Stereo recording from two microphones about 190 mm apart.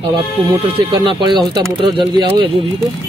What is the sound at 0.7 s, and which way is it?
Speech, 25° right (ahead or behind).